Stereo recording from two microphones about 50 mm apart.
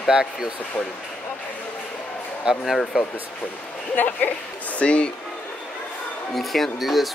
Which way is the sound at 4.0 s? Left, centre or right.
Left.